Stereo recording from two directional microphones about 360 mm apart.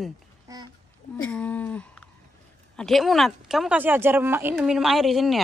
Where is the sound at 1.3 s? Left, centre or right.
Centre.